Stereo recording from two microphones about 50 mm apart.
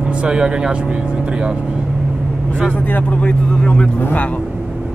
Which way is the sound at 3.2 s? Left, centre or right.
Left.